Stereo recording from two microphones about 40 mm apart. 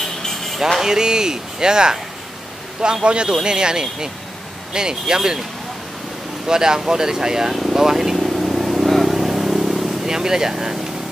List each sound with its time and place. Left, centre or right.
0.2 s music: centre
0.6 s speech: centre
6.4 s speech: centre
7.6 s vehicle: centre
10.0 s speech: centre